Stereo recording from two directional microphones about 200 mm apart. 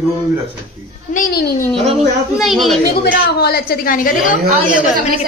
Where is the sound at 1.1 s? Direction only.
45° left (ahead or behind).